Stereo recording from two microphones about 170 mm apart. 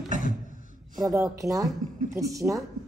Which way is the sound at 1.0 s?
15° right (ahead or behind).